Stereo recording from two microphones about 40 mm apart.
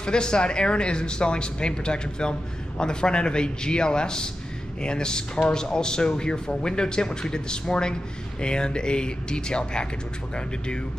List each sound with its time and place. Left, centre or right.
0.0 s a man's voice: left